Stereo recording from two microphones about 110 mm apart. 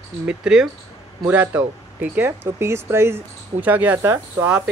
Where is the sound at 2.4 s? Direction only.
25° right (ahead or behind).